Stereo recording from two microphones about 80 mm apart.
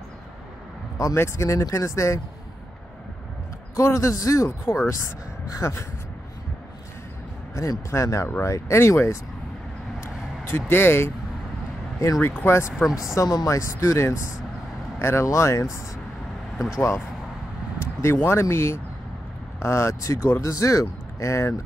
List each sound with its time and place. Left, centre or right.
0.9 s speech: left
3.7 s speech: left
7.9 s speech: left
10.7 s speech: left
12.2 s speech: left
13.3 s speech: left
13.6 s speech: left
16.5 s speech: centre
17.7 s speech: left